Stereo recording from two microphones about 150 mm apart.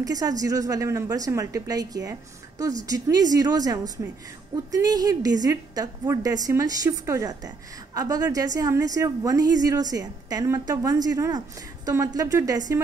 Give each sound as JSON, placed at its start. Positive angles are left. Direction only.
{"t": 0.0, "sound": "a woman's voice", "side_deg": -25}